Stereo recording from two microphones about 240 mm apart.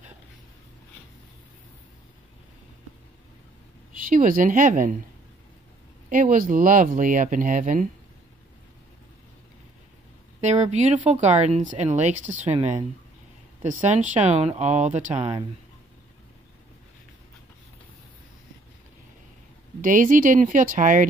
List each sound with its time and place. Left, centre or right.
3.9 s speech: right
6.0 s speech: right
10.4 s speech: right
19.8 s speech: right